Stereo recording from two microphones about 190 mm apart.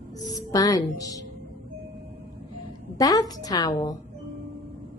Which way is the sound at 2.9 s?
20° left (ahead or behind).